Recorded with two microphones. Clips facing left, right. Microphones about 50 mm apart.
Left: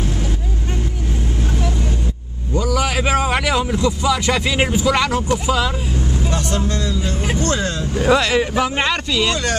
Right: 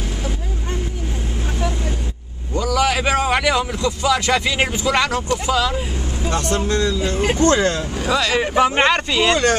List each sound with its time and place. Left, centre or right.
2.5 s a sound: centre
4.0 s speech: centre
6.5 s speech: right
7.4 s speech: right
8.0 s speech: left
8.4 s speech: centre